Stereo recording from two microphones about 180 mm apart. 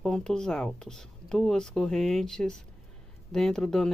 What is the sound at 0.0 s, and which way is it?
Speech, 5° left (ahead or behind).